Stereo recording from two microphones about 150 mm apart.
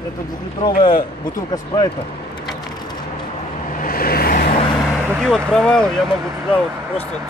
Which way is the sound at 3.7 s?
70° left (ahead or behind).